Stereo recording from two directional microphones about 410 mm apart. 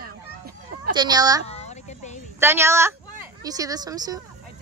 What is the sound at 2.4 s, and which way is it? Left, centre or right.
Speech, centre.